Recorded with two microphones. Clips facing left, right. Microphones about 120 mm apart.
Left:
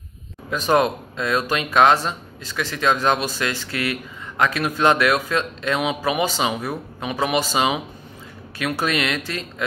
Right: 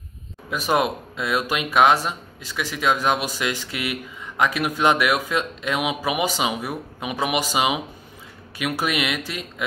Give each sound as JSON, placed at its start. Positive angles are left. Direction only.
{"t": 0.5, "sound": "speech", "side_deg": -10}